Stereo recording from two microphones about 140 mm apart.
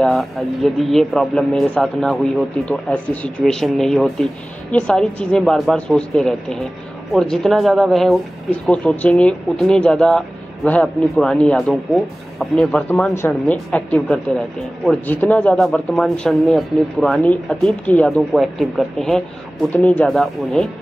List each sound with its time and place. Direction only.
0.0 s a woman's voice: centre (ahead or behind)